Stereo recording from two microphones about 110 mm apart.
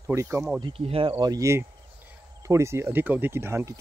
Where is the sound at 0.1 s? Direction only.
25° right (ahead or behind).